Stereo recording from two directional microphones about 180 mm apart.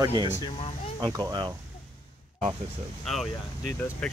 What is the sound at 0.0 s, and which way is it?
Speech, 25° right (ahead or behind).